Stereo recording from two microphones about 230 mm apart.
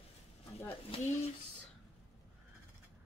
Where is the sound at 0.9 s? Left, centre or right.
Left.